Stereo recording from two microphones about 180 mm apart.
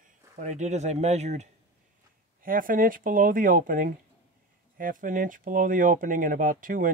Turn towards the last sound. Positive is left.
turn(degrees=-50)  # may be behind; listen again after turning